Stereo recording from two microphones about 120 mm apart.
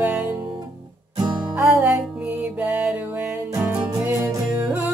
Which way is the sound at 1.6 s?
15° right (ahead or behind).